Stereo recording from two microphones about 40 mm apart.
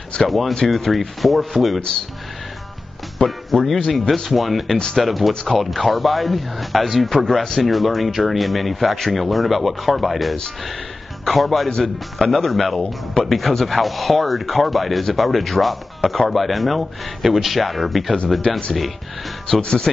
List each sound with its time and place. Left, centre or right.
0.3 s speech: centre
3.2 s speech: centre
5.3 s speech: centre
5.6 s speech: centre
19.6 s speech: left